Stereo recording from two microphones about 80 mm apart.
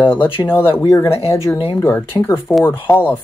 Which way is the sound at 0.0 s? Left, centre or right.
Left.